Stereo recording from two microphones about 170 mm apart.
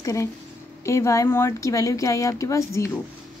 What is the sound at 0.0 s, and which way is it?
Speech, 20° left (ahead or behind).